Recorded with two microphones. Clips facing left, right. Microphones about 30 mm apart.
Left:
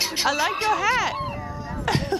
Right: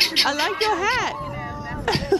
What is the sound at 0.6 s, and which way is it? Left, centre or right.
Speech, right.